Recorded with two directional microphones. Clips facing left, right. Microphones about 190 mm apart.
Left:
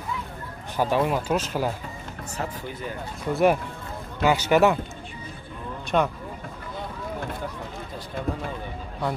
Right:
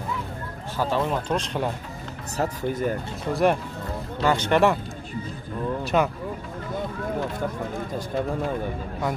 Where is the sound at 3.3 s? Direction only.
Centre (ahead or behind).